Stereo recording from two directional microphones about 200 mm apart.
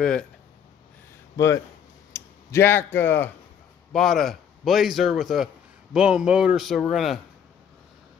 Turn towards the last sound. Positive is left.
turn(degrees=0)  # may be behind; listen again after turning